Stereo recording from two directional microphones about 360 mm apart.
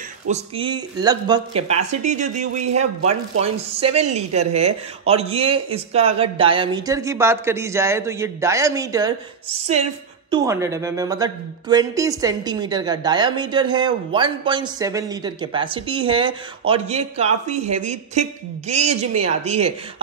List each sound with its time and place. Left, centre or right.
0.3 s speech: centre
10.3 s speech: centre